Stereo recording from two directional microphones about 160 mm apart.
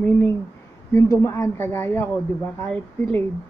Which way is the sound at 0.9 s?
15° left (ahead or behind).